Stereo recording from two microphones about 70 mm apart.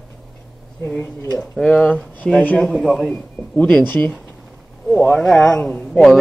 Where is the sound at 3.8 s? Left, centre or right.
Left.